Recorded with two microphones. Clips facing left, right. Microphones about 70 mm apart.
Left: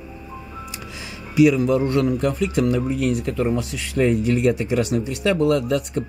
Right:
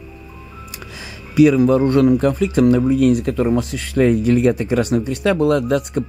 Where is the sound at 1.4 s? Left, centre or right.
Right.